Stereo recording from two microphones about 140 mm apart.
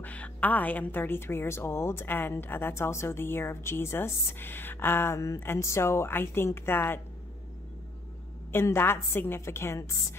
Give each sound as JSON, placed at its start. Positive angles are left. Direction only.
{"t": 0.0, "sound": "a woman's voice", "side_deg": 10}
{"t": 8.5, "sound": "a woman's voice", "side_deg": 15}